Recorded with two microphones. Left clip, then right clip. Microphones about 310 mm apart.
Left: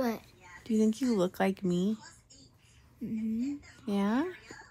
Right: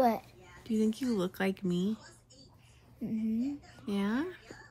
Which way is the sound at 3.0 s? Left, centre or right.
Centre.